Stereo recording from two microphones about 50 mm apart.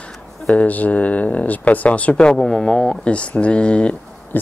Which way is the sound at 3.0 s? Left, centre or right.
Left.